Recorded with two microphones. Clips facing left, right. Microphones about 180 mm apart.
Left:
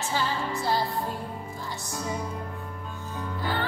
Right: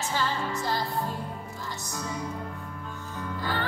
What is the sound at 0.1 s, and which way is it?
Music, 15° left (ahead or behind).